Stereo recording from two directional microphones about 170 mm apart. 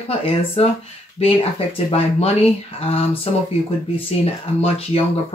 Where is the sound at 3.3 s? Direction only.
35° left (ahead or behind).